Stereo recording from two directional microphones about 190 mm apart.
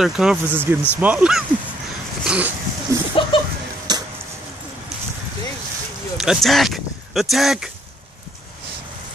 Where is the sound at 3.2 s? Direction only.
25° left (ahead or behind).